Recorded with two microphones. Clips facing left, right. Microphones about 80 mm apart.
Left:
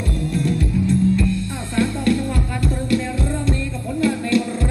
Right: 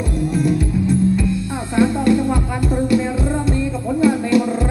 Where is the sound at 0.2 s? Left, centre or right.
Centre.